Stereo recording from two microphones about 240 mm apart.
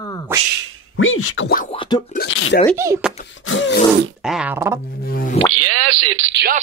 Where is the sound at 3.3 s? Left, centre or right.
Left.